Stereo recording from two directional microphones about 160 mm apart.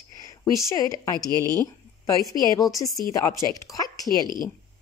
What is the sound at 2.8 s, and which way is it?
Speech, 20° left (ahead or behind).